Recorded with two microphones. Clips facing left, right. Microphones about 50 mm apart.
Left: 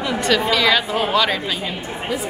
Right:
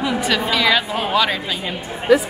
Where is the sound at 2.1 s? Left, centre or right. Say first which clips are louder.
Right 12 dB; right.